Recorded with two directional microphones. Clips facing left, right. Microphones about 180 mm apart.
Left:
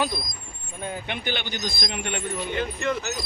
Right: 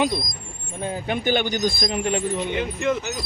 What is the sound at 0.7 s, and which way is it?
Speech, 30° right (ahead or behind).